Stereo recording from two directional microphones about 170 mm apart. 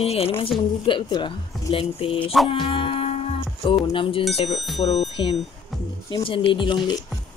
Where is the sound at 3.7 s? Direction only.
30° left (ahead or behind).